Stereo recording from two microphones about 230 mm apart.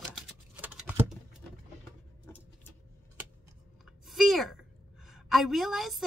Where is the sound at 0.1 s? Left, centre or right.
Centre.